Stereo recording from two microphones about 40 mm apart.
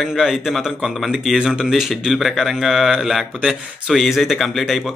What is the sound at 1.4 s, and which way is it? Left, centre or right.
Speech, right.